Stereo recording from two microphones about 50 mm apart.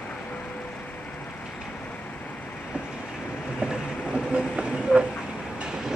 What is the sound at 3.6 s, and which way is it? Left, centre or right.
Vehicle, centre.